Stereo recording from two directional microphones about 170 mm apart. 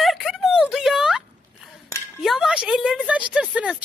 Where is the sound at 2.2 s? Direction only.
Centre (ahead or behind).